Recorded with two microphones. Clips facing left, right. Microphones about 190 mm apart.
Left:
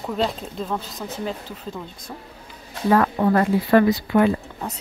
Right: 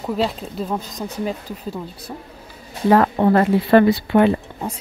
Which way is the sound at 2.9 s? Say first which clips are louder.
Right 3 dB; 30° right (ahead or behind).